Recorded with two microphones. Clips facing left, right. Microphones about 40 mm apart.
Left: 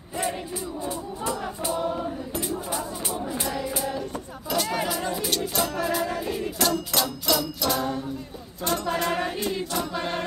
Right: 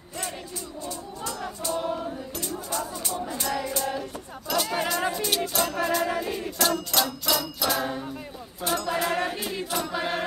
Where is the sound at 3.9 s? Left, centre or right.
Centre.